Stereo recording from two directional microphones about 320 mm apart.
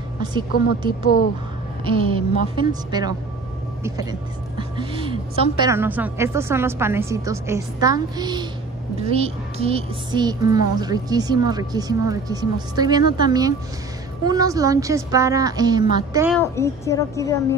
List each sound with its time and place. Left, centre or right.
0.2 s a woman's voice: centre
1.9 s a woman's voice: centre
16.3 s a woman's voice: centre